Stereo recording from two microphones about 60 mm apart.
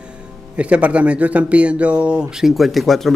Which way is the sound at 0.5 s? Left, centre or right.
Right.